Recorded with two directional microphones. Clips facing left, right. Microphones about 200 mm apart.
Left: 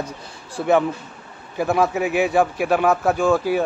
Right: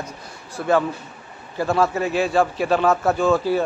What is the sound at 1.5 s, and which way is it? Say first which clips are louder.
A man's voice: left 1 dB; 15° left (ahead or behind).